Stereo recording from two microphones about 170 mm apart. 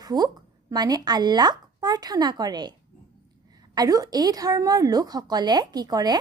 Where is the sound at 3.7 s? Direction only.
20° right (ahead or behind).